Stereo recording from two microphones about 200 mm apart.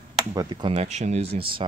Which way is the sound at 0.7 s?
35° right (ahead or behind).